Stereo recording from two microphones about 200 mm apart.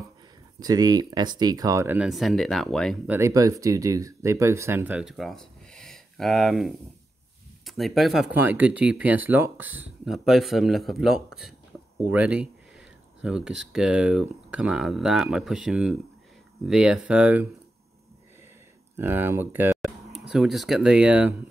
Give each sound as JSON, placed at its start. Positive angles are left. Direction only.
{"t": 0.6, "sound": "speech", "side_deg": -20}
{"t": 2.0, "sound": "speech", "side_deg": 0}
{"t": 3.1, "sound": "speech", "side_deg": -15}
{"t": 18.9, "sound": "speech", "side_deg": -10}